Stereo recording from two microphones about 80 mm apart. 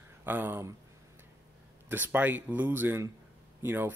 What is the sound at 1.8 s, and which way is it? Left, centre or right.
Speech, right.